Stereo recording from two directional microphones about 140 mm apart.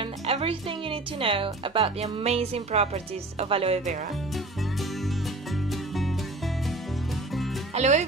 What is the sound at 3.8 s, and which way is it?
Speech, 60° right (ahead or behind).